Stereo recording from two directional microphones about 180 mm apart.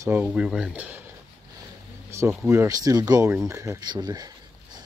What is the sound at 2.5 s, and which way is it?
Speech, 15° right (ahead or behind).